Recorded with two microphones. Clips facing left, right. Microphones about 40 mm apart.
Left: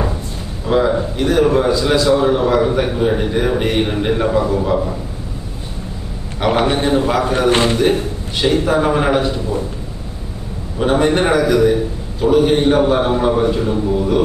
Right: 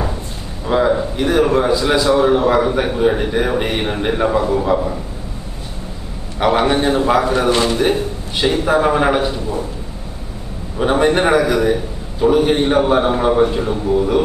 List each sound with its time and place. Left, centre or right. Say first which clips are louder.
0.7 s a man's voice: even; centre
6.6 s a man's voice: even; centre
7.4 s a man's voice: left 2 dB; left
8.4 s a man's voice: even; centre
10.8 s a man's voice: even; centre